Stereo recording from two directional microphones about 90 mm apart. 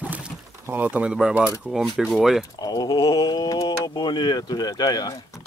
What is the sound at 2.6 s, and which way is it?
Speech, 50° left (ahead or behind).